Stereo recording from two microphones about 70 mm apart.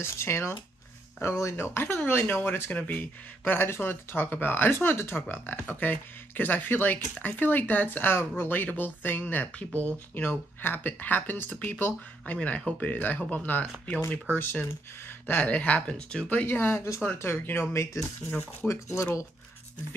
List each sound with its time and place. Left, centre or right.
0.0 s speech: left; by 16.3 s centre
16.3 s speech: left
18.7 s speech: left